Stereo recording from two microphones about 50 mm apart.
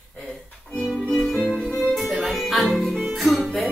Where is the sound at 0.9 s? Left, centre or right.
Centre.